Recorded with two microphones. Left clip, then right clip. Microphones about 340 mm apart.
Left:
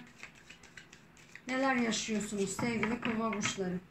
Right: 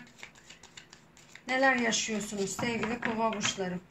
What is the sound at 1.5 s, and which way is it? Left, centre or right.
Speech, right.